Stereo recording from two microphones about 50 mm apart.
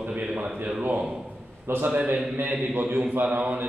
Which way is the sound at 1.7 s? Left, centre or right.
Right.